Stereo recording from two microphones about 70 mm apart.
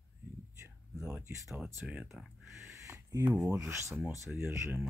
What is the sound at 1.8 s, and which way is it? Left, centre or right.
Speech, centre.